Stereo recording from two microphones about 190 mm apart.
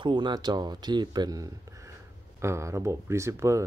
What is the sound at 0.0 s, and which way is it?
Speech, 25° right (ahead or behind).